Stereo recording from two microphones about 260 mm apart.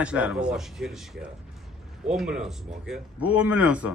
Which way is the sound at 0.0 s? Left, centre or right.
Centre.